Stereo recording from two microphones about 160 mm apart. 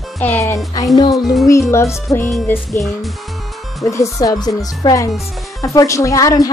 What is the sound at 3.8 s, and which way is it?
Speech, 20° left (ahead or behind).